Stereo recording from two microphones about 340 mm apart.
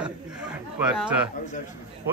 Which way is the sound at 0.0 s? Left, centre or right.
Centre.